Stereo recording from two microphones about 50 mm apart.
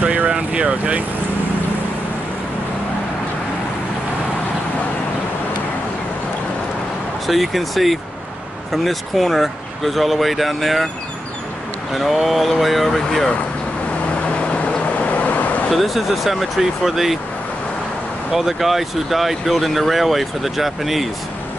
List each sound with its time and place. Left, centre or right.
0.0 s vehicle: right
0.3 s speech: right
7.2 s speech: centre
11.9 s speech: centre
14.2 s vehicle: left
15.7 s speech: centre
18.3 s speech: centre